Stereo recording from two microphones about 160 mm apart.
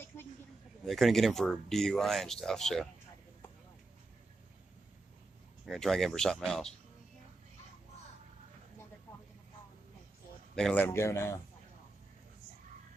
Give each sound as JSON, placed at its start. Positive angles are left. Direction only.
{"t": 0.8, "sound": "speech", "side_deg": 0}
{"t": 5.7, "sound": "speech", "side_deg": 0}
{"t": 10.5, "sound": "speech", "side_deg": 5}